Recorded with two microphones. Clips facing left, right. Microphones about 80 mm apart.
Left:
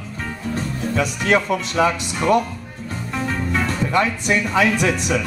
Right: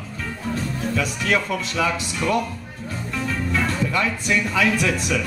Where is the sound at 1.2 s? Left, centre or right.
Left.